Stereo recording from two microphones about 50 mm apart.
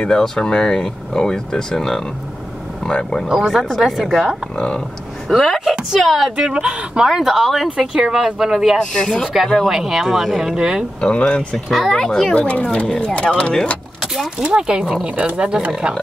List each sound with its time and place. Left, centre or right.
0.1 s speech: centre
3.3 s speech: centre
4.6 s speech: centre
5.3 s a woman's voice: centre
6.3 s speech: centre
7.1 s speech: centre
8.7 s speech: centre
9.3 s speech: centre
11.0 s speech: centre
11.5 s speech: centre
12.4 s speech: left
14.0 s keys jangling: centre
14.4 s speech: centre